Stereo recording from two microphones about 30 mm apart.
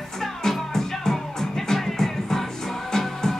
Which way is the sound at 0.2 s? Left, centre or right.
Centre.